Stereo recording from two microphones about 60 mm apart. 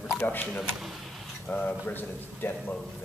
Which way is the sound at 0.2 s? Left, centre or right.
Left.